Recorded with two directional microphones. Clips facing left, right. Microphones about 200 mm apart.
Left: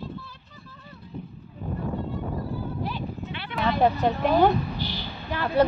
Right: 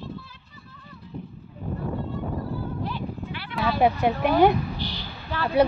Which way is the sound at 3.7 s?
10° right (ahead or behind).